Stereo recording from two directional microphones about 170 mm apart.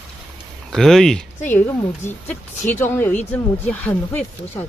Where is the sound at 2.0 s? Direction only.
45° left (ahead or behind).